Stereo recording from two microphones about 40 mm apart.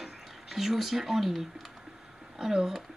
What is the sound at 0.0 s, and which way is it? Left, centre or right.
Speech, centre.